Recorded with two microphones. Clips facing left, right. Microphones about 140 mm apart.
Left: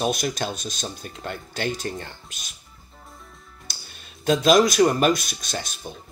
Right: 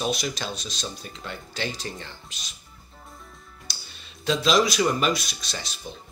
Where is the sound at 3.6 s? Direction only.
50° left (ahead or behind).